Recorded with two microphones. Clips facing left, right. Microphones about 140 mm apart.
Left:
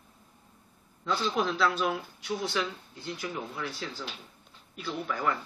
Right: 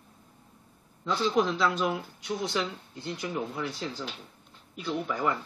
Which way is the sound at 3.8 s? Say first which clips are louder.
Right 3 dB; 20° right (ahead or behind).